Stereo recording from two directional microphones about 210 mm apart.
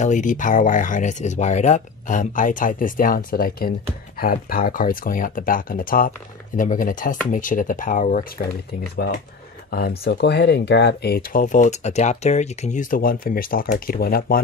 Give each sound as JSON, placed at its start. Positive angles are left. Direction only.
{"t": 0.0, "sound": "speech", "side_deg": 35}
{"t": 9.7, "sound": "speech", "side_deg": 45}